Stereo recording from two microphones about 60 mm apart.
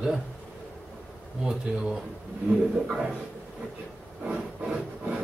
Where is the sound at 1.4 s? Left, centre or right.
Centre.